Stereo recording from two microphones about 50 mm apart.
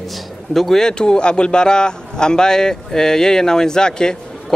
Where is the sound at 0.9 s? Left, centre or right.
Centre.